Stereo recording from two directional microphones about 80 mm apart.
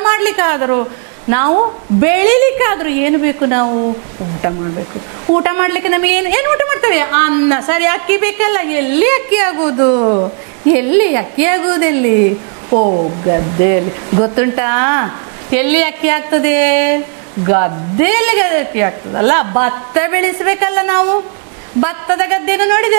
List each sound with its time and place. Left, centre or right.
0.0 s a woman's voice: centre
5.2 s a woman's voice: right